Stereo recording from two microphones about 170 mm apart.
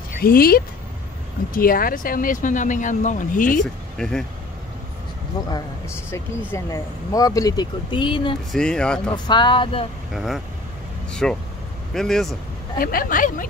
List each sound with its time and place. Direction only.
0.1 s speech: 60° left (ahead or behind)
4.0 s speech: 5° left (ahead or behind)
5.4 s speech: 25° left (ahead or behind)
8.5 s speech: 5° left (ahead or behind)
9.1 s speech: 25° left (ahead or behind)
10.1 s speech: centre (ahead or behind)
12.7 s speech: 55° left (ahead or behind)